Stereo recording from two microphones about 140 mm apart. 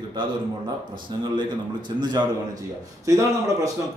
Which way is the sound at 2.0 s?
30° right (ahead or behind).